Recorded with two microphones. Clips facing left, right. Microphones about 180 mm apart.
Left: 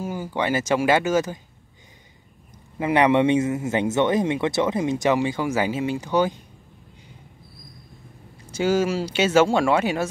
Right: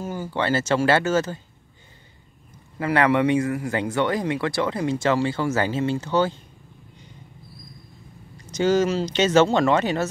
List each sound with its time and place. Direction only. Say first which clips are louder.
0.0 s speech: even; 10° left (ahead or behind)
2.8 s speech: left 2 dB; 20° left (ahead or behind)
8.5 s speech: right 1 dB; 10° left (ahead or behind)